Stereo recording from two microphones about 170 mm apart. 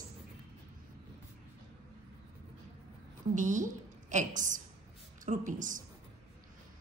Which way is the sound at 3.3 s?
50° right (ahead or behind).